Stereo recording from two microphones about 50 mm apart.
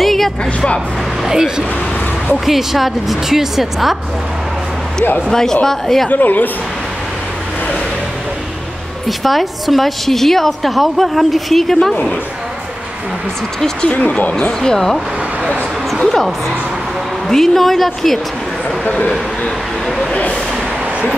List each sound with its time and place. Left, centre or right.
0.0 s a sound: centre
1.2 s a woman's voice: centre
5.3 s speech: centre
6.0 s a woman's voice: left
9.2 s a woman's voice: centre
13.7 s speech: left
14.6 s a woman's voice: centre